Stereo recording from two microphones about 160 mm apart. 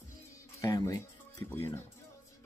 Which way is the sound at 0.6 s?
20° left (ahead or behind).